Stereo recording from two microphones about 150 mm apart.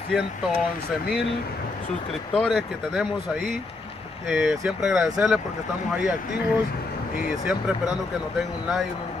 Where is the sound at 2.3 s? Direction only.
5° left (ahead or behind).